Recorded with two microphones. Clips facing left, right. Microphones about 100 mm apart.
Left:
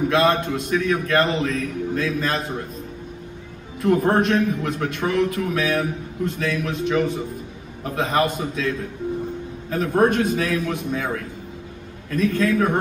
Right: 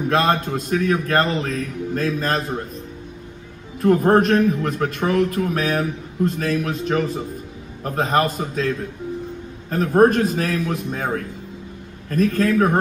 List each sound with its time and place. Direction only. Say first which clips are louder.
0.1 s a man's voice: right 3 dB; 40° right (ahead or behind)
3.8 s a man's voice: right 3 dB; 40° right (ahead or behind)
12.1 s a man's voice: right 2 dB; 45° right (ahead or behind)